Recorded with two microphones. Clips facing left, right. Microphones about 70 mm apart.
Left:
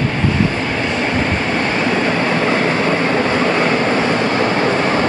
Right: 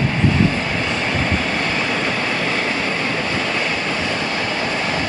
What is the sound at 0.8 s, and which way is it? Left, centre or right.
Train, centre.